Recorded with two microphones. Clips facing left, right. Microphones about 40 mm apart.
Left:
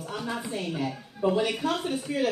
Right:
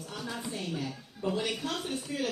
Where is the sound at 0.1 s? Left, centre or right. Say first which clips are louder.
Left 5 dB; centre.